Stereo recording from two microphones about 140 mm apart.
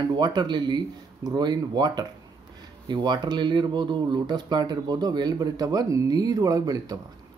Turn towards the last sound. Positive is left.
turn(degrees=-25)  # may be behind; listen again after turning